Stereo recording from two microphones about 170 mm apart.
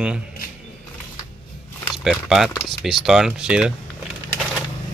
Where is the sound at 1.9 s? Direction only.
Centre (ahead or behind).